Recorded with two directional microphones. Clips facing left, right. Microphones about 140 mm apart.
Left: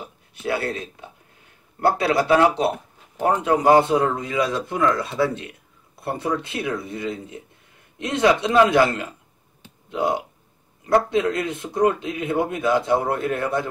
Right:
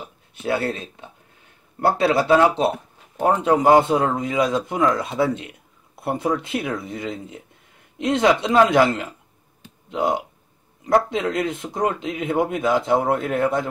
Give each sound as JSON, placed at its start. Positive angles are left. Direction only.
{"t": 0.4, "sound": "a man's voice", "side_deg": -25}
{"t": 1.9, "sound": "a man's voice", "side_deg": -25}